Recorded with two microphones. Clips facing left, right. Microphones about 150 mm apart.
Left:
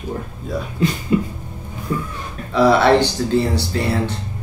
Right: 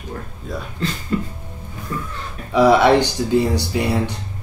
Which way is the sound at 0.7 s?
15° left (ahead or behind).